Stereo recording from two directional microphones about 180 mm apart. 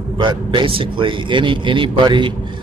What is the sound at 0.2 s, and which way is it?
A man's voice, 25° right (ahead or behind).